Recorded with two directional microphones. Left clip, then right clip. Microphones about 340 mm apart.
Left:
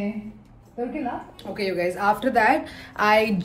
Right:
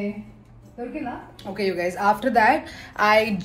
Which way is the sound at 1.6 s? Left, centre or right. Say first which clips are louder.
Right 1 dB; centre.